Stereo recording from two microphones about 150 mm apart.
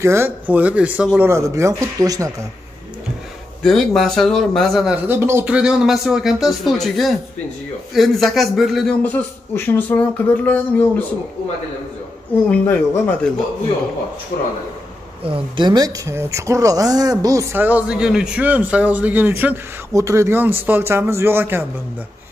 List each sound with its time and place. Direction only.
0.0 s speech: 15° right (ahead or behind)
3.6 s speech: centre (ahead or behind)
9.0 s speech: 15° left (ahead or behind)
12.4 s speech: 15° left (ahead or behind)
14.3 s speech: 55° left (ahead or behind)
15.2 s speech: 35° right (ahead or behind); by 21.6 s 15° right (ahead or behind)